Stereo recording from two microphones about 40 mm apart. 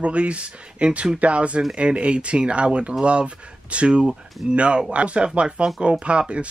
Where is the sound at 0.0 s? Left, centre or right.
Right.